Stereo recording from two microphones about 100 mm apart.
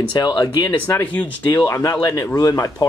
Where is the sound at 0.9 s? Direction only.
20° left (ahead or behind).